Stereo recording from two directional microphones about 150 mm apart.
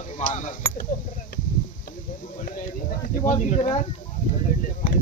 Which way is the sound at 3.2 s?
55° left (ahead or behind).